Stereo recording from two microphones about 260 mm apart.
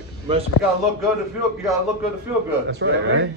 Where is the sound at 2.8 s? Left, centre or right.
Right.